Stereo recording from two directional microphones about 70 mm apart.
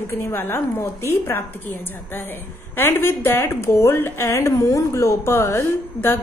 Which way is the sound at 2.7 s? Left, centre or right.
Left.